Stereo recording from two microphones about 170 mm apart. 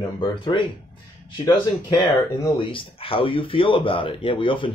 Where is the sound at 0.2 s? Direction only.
30° left (ahead or behind).